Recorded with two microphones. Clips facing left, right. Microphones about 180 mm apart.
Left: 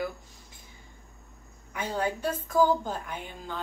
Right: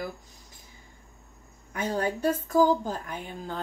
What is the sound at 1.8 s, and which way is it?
Speech, 40° right (ahead or behind).